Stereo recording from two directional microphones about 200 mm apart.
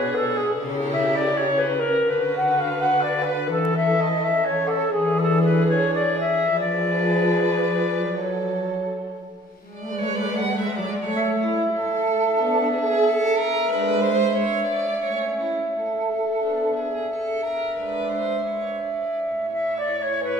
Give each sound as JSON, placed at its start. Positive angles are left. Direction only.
{"t": 5.0, "sound": "music", "side_deg": 10}
{"t": 12.9, "sound": "violin", "side_deg": -35}